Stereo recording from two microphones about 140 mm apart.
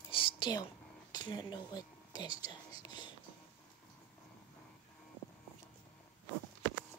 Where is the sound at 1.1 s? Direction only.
30° left (ahead or behind).